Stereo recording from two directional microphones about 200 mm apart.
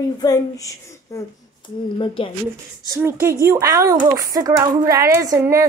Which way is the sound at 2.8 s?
15° right (ahead or behind).